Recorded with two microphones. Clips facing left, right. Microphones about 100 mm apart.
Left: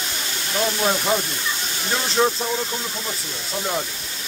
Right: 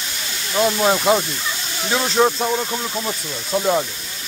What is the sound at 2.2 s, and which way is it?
Speech, 15° right (ahead or behind).